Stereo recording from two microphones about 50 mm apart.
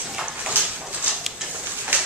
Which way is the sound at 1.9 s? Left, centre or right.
Right.